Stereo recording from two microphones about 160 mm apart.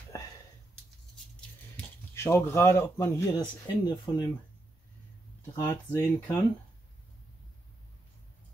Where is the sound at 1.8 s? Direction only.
15° left (ahead or behind).